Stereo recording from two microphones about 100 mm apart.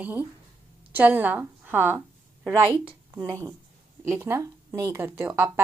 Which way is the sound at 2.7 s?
60° right (ahead or behind).